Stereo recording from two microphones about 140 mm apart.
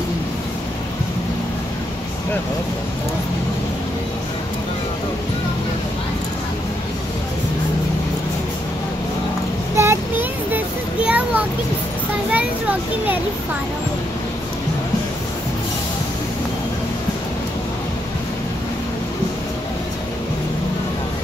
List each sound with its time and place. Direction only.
9.8 s child singing: 15° right (ahead or behind)
11.1 s a sound: 10° right (ahead or behind)
12.3 s a child's voice: 10° right (ahead or behind)